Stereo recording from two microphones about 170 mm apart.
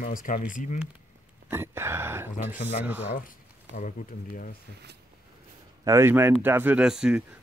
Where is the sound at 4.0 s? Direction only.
55° left (ahead or behind).